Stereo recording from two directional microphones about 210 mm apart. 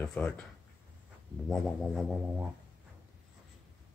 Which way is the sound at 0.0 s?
5° left (ahead or behind).